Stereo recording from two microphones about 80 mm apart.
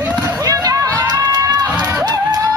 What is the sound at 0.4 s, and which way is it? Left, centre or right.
Run, right.